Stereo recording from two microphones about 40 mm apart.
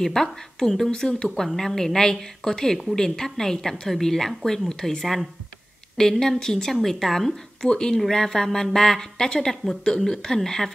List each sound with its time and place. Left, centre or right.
0.0 s a woman's voice: centre
5.0 s speech: centre
5.9 s a woman's voice: centre